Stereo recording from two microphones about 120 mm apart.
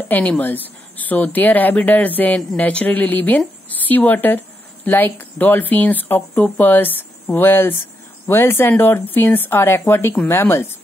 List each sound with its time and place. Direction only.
0.1 s speech: 15° left (ahead or behind)